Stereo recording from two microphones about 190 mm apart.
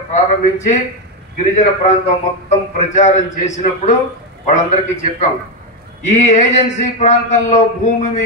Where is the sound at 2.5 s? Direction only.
35° left (ahead or behind).